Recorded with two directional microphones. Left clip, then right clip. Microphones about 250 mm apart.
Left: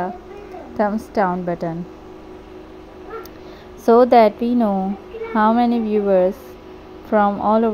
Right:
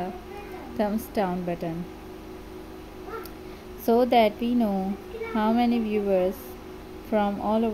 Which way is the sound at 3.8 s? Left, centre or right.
Centre.